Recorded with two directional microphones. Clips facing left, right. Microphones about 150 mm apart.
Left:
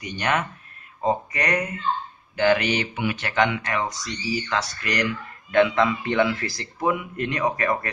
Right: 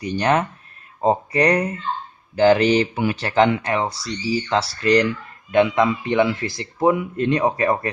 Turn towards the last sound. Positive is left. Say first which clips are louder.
# right 4 dB
turn(degrees=-25)  # may be behind; listen again after turning